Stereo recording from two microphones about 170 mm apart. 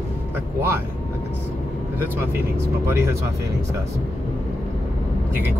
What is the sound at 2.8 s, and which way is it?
Speech, 15° right (ahead or behind).